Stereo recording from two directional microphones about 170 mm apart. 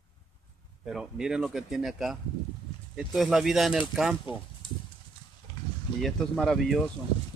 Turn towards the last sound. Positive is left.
turn(degrees=0)  # may be behind; listen again after turning